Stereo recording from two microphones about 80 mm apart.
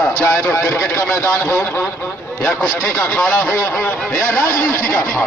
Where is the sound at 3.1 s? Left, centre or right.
Left.